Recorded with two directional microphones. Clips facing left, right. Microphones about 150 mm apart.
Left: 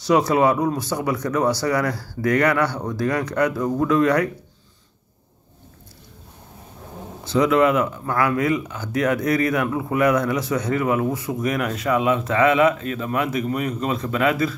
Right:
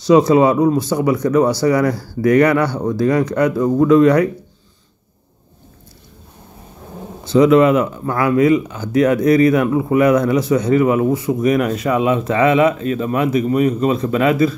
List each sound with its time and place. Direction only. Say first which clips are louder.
0.0 s speech: right 6 dB; 20° right (ahead or behind)
7.2 s speech: right 6 dB; 25° right (ahead or behind)